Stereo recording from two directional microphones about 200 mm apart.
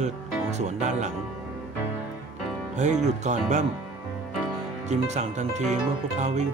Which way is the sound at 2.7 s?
35° right (ahead or behind).